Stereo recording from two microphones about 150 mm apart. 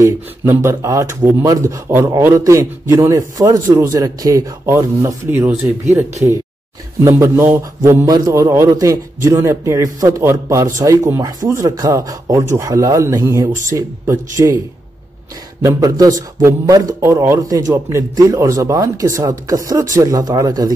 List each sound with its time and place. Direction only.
0.0 s a man's voice: 20° right (ahead or behind)
7.1 s a man's voice: 20° right (ahead or behind)
15.6 s a man's voice: 25° right (ahead or behind)